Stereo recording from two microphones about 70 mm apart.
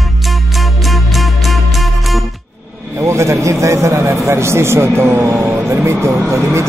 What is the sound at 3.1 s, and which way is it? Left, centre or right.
A man's voice, right.